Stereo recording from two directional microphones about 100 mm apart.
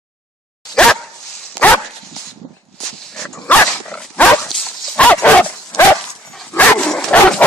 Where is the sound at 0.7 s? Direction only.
5° left (ahead or behind).